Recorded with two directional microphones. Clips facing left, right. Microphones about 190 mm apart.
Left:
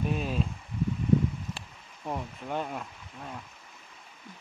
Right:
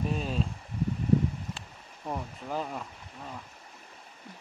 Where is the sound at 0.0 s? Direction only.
Centre (ahead or behind).